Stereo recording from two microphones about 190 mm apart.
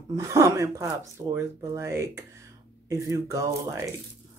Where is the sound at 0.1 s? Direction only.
15° right (ahead or behind).